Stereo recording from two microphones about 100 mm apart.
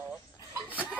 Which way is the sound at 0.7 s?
15° right (ahead or behind).